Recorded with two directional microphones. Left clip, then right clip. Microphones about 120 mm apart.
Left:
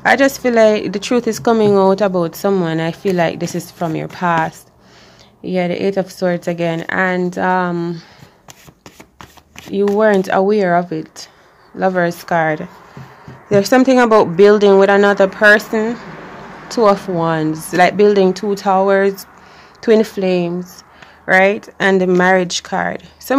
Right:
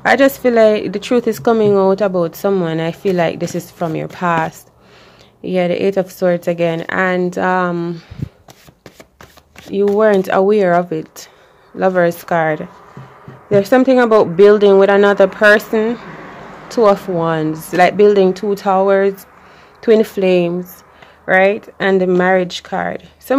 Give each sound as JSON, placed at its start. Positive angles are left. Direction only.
{"t": 0.0, "sound": "a woman's voice", "side_deg": -10}
{"t": 9.7, "sound": "a woman's voice", "side_deg": -5}
{"t": 20.2, "sound": "speech", "side_deg": -20}
{"t": 21.3, "sound": "speech", "side_deg": -5}